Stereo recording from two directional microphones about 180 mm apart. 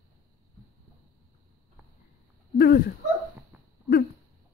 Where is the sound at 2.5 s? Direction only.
60° left (ahead or behind).